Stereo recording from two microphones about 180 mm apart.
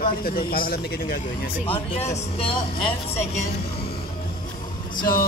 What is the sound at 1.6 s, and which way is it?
Speech, 35° left (ahead or behind).